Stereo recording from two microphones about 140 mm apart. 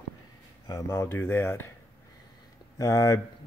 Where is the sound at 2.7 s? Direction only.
25° left (ahead or behind).